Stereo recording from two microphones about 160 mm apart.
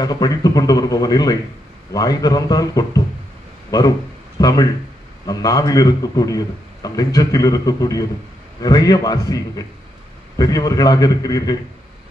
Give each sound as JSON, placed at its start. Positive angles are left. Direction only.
{"t": 0.0, "sound": "a man's voice", "side_deg": 25}